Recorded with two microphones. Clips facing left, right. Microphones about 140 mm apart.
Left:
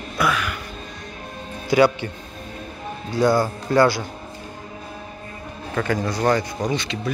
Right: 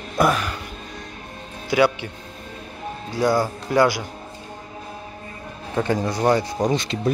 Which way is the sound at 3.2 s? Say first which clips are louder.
Left 2 dB; 10° right (ahead or behind).